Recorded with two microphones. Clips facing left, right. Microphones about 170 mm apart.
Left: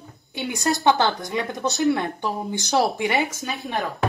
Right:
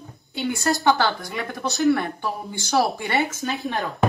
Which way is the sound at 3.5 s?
Centre (ahead or behind).